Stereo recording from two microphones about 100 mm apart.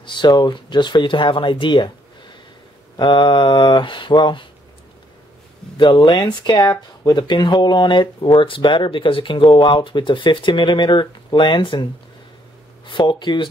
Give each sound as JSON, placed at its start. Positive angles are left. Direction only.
{"t": 0.0, "sound": "speech", "side_deg": 50}
{"t": 3.0, "sound": "speech", "side_deg": 50}
{"t": 5.8, "sound": "speech", "side_deg": 55}
{"t": 12.8, "sound": "speech", "side_deg": 55}